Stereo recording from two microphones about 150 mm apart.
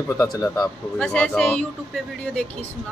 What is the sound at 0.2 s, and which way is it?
Speech, 25° left (ahead or behind).